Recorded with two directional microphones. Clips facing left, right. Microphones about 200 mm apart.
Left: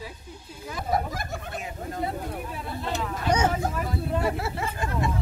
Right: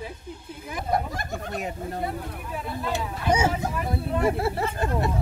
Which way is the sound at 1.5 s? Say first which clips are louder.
Right 4 dB; 40° right (ahead or behind).